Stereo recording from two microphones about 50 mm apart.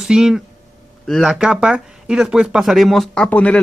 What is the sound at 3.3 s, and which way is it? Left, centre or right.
Speech, left.